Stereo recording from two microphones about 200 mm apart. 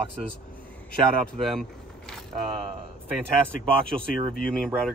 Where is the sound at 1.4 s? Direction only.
Centre (ahead or behind).